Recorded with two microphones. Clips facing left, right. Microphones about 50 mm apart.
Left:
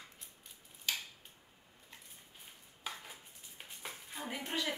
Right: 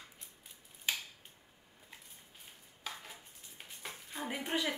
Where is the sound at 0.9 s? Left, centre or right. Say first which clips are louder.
Right 2 dB; right.